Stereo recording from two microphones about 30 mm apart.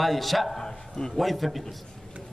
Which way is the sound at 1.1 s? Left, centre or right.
Centre.